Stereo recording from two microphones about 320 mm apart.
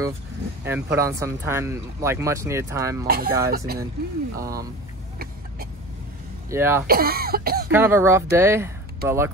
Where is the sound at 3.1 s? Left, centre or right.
Right.